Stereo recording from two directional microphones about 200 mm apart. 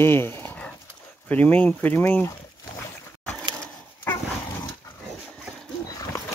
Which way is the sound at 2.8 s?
5° left (ahead or behind).